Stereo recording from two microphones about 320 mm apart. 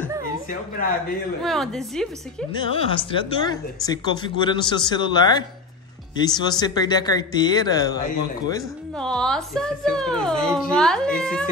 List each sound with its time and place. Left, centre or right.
0.5 s a woman's voice: left
1.4 s speech: centre
2.5 s speech: centre